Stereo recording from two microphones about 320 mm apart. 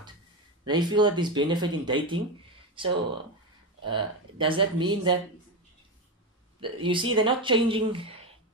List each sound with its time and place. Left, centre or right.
0.7 s speech: centre
6.6 s speech: centre